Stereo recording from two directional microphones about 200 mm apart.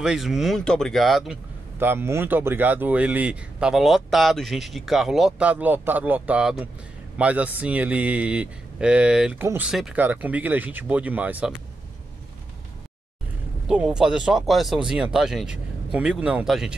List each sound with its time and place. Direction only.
0.0 s a man's voice: centre (ahead or behind)
13.7 s a man's voice: 5° right (ahead or behind)